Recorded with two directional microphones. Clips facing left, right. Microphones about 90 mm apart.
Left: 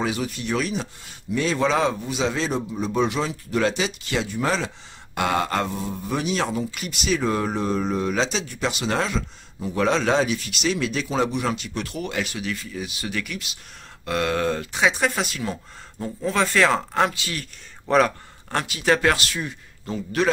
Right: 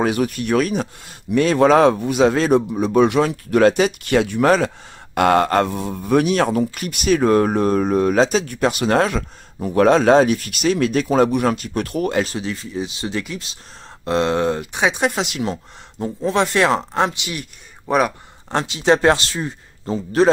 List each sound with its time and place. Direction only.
0.0 s speech: 55° right (ahead or behind); by 20.2 s 30° right (ahead or behind)